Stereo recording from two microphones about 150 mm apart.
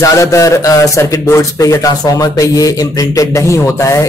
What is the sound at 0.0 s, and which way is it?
A man's voice, 20° left (ahead or behind).